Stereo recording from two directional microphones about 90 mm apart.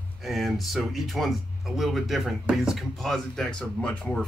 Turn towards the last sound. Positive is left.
turn(degrees=10)  # may be behind; listen again after turning